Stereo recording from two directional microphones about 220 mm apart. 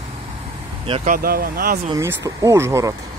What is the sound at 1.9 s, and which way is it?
Speech, 15° right (ahead or behind).